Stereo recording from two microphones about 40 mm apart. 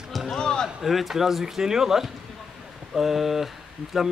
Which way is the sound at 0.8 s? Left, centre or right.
Centre.